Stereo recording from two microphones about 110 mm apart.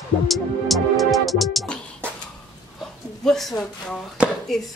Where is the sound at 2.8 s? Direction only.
Centre (ahead or behind).